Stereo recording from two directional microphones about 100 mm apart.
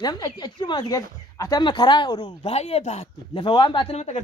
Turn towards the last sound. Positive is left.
turn(degrees=90)